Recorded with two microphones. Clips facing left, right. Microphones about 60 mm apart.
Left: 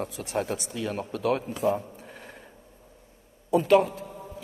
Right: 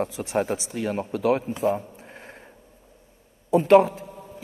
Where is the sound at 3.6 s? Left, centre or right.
Right.